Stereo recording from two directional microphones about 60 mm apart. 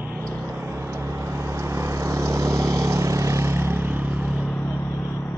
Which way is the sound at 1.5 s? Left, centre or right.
Right.